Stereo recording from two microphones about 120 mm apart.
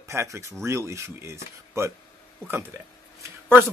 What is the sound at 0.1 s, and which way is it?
Speech, 25° right (ahead or behind).